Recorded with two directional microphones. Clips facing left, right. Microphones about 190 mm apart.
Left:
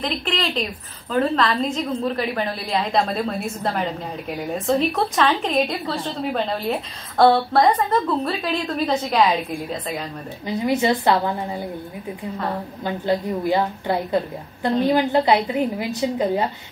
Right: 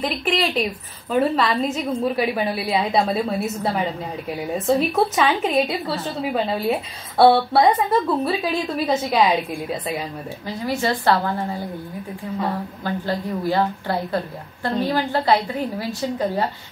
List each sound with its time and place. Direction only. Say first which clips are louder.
0.0 s a woman's voice: right 2 dB; 5° right (ahead or behind)
10.4 s a woman's voice: left 4 dB; 20° left (ahead or behind)
12.8 s a woman's voice: left 3 dB; 20° left (ahead or behind)